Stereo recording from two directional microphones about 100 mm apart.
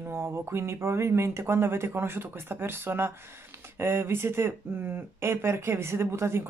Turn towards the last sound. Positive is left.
turn(degrees=-25)  # may be behind; listen again after turning